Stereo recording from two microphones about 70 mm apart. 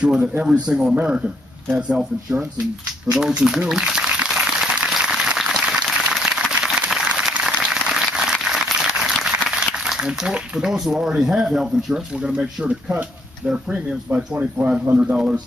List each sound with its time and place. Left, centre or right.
0.4 s speech: centre
3.1 s a sound: centre
4.8 s applause: centre
13.5 s speech: centre